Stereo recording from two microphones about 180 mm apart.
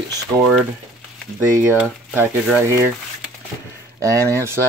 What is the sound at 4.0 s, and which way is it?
Speech, 15° right (ahead or behind).